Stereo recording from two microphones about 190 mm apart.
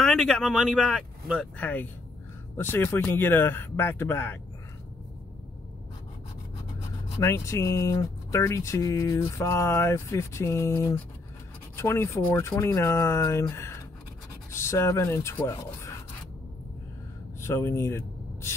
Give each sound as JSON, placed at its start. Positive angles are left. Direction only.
{"t": 0.0, "sound": "speech", "side_deg": 0}
{"t": 1.6, "sound": "speech", "side_deg": 10}
{"t": 7.2, "sound": "speech", "side_deg": 15}
{"t": 17.4, "sound": "speech", "side_deg": 15}